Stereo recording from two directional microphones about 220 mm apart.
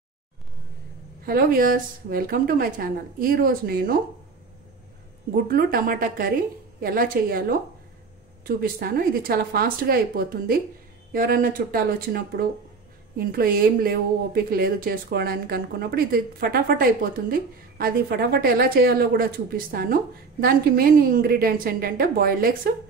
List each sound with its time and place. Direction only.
1.2 s a woman's voice: 40° right (ahead or behind)
5.3 s a woman's voice: 40° right (ahead or behind)